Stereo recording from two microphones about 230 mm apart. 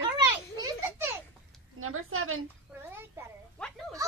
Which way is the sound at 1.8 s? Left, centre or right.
Right.